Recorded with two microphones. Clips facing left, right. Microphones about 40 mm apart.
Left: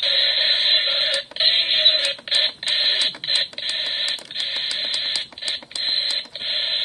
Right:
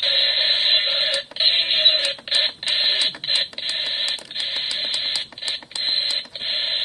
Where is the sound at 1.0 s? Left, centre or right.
Centre.